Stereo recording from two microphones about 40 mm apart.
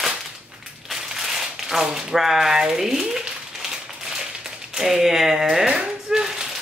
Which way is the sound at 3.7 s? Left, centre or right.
Centre.